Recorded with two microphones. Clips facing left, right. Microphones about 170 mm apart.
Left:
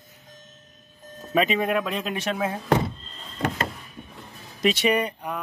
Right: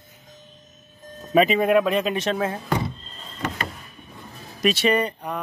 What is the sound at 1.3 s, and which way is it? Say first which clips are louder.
Speech: right 5 dB; centre (ahead or behind).